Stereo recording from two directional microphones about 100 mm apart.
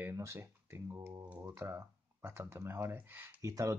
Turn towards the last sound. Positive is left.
turn(degrees=-30)  # may be behind; listen again after turning